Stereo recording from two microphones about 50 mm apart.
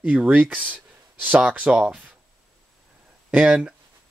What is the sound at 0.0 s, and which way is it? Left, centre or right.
Speech, right.